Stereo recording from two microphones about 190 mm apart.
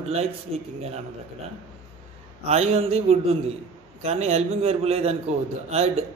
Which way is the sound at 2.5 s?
35° right (ahead or behind).